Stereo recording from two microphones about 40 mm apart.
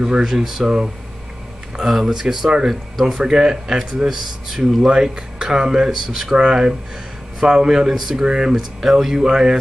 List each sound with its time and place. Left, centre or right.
0.0 s speech: centre
1.9 s speech: centre
3.2 s speech: centre
6.3 s speech: right